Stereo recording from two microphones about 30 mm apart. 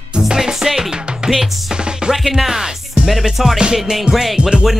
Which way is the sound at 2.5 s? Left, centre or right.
Centre.